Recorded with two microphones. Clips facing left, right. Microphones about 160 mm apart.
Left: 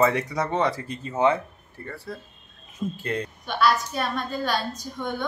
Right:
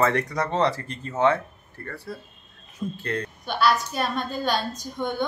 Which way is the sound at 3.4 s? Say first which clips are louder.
Even; centre (ahead or behind).